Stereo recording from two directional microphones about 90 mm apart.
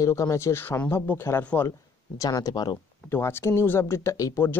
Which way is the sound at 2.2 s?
40° left (ahead or behind).